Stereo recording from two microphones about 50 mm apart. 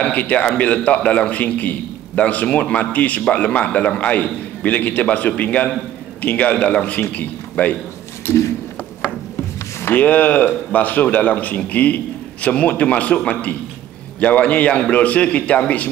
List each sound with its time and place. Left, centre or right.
0.0 s a man's voice: left
8.3 s a sound: left
9.9 s a man's voice: left